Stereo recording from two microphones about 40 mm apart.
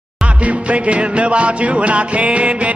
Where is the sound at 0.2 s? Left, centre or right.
Right.